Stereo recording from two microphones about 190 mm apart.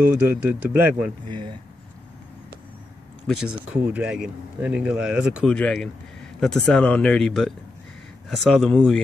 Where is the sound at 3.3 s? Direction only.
Centre (ahead or behind).